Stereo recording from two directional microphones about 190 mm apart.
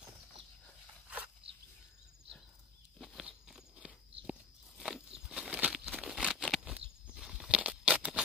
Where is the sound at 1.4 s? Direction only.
30° right (ahead or behind).